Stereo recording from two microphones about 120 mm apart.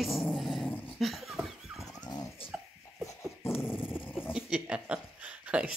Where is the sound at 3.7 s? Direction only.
5° right (ahead or behind).